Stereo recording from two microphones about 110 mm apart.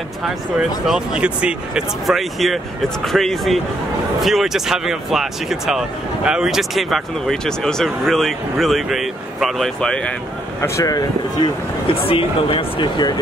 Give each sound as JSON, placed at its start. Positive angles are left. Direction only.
{"t": 0.2, "sound": "speech", "side_deg": -5}
{"t": 10.6, "sound": "speech", "side_deg": 30}
{"t": 11.9, "sound": "speech", "side_deg": 55}